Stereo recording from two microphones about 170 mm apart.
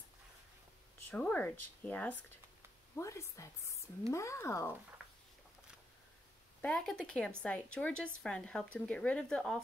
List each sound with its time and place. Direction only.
1.1 s speech: 10° left (ahead or behind)
6.6 s speech: 5° left (ahead or behind)